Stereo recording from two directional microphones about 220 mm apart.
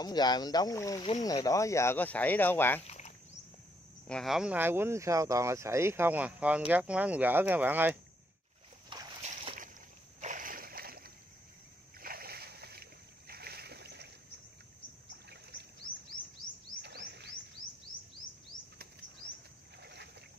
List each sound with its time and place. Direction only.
0.0 s speech: 20° left (ahead or behind)
2.9 s a sound: 30° left (ahead or behind)
4.1 s speech: centre (ahead or behind)
8.9 s splash: 20° right (ahead or behind)
10.2 s splash: 35° right (ahead or behind)
13.3 s boat: 45° right (ahead or behind)
15.0 s rowboat: 50° right (ahead or behind)
16.8 s music: 50° right (ahead or behind)
19.8 s rowboat: 50° right (ahead or behind)